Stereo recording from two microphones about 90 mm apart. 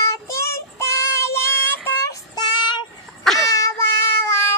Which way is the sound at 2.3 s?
55° left (ahead or behind).